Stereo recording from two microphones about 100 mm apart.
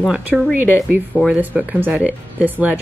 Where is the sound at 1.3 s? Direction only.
15° right (ahead or behind).